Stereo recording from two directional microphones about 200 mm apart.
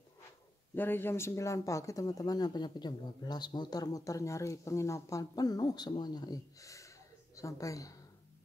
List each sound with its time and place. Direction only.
0.7 s speech: 10° left (ahead or behind)